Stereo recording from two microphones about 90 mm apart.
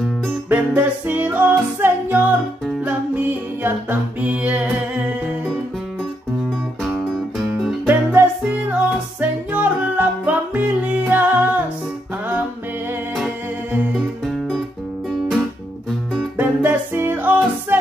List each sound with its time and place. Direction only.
0.5 s music: 15° right (ahead or behind)
6.8 s music: centre (ahead or behind)
7.8 s music: 20° right (ahead or behind)
13.9 s music: centre (ahead or behind)
15.9 s music: 5° left (ahead or behind)
16.3 s music: 20° right (ahead or behind)